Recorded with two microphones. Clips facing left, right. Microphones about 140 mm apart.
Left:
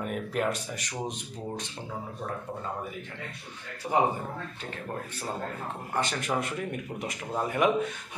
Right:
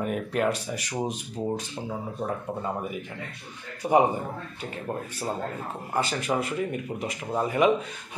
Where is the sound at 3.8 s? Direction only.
15° right (ahead or behind).